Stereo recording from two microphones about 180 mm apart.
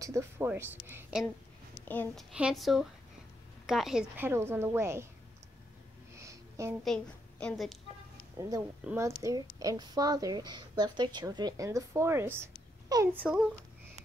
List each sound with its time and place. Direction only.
0.0 s a woman's voice: 15° right (ahead or behind)
1.9 s a woman's voice: 10° left (ahead or behind)
2.3 s a woman's voice: 5° right (ahead or behind)
6.1 s a sound: 15° right (ahead or behind)
6.8 s a woman's voice: 5° left (ahead or behind)
8.4 s a woman's voice: 20° right (ahead or behind)